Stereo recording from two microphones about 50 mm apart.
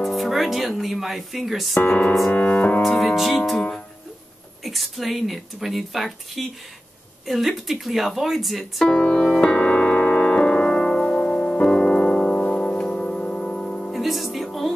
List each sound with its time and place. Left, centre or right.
0.0 s speech: centre
1.8 s speech: left
2.3 s piano: left
2.8 s speech: centre
4.6 s speech: centre
8.8 s speech: centre
9.2 s music: centre
9.6 s music: left
13.9 s music: centre